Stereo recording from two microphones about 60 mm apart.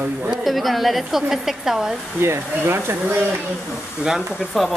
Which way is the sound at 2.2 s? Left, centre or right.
Right.